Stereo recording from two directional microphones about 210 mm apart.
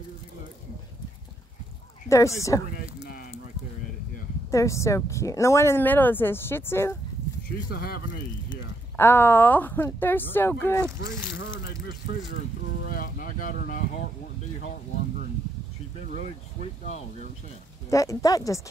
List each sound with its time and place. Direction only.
2.0 s speech: 15° left (ahead or behind)
2.7 s a sound: 45° left (ahead or behind)
4.5 s speech: 15° left (ahead or behind)
7.7 s speech: 45° left (ahead or behind)
8.9 s speech: 10° left (ahead or behind)
11.2 s speech: 60° left (ahead or behind)
11.5 s speech: 15° right (ahead or behind)
12.9 s speech: 40° left (ahead or behind)
17.8 s speech: 15° left (ahead or behind)